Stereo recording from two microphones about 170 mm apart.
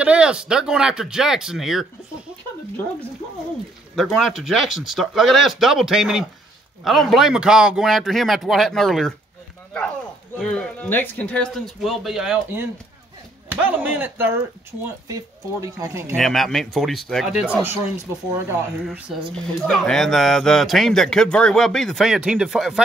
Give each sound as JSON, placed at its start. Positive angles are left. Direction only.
{"t": 0.0, "sound": "speech", "side_deg": -5}
{"t": 3.9, "sound": "speech", "side_deg": 0}
{"t": 10.4, "sound": "speech", "side_deg": 5}
{"t": 16.2, "sound": "speech", "side_deg": 0}
{"t": 18.9, "sound": "speech", "side_deg": -5}